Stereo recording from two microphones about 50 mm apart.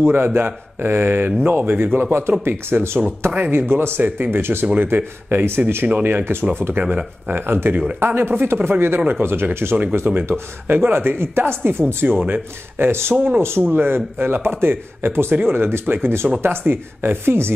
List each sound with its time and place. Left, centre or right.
0.0 s speech: right
6.7 s speech: right
7.2 s speech: right
13.6 s speech: right